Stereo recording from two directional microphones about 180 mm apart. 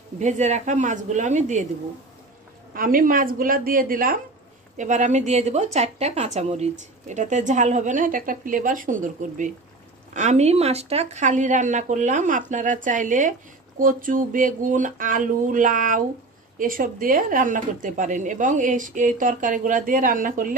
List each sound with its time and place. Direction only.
0.2 s speech: 40° right (ahead or behind)
2.7 s speech: 50° right (ahead or behind)